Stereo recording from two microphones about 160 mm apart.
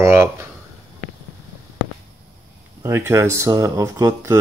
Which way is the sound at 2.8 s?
15° right (ahead or behind).